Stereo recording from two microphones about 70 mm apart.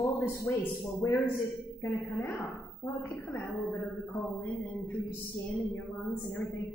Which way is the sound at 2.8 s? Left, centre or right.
Left.